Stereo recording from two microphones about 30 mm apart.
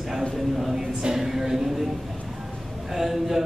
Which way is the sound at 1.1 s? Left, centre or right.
Centre.